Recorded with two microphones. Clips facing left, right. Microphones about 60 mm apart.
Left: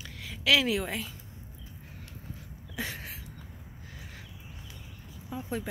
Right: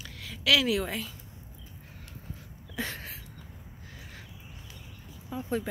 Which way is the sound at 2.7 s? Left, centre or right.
Centre.